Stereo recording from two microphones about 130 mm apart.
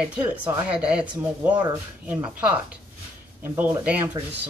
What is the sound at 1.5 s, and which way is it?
Speech, 35° right (ahead or behind).